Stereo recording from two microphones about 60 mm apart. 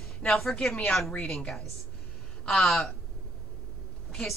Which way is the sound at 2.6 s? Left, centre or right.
Centre.